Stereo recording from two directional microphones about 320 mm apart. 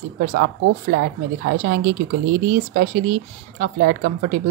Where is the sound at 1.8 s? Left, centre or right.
Right.